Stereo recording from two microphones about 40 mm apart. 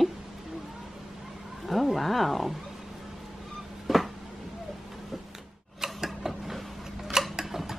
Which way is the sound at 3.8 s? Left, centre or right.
Centre.